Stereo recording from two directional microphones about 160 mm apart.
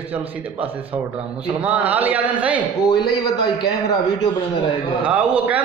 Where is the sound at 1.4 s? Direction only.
10° right (ahead or behind).